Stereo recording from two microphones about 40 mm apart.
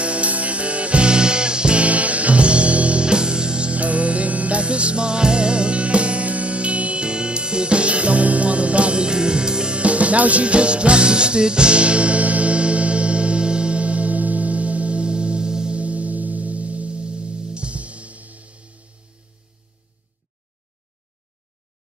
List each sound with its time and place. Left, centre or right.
0.0 s music: right
9.8 s music: right
15.8 s music: right